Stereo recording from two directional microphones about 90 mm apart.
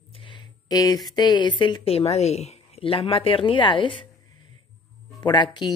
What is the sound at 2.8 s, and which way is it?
Speech, 90° left.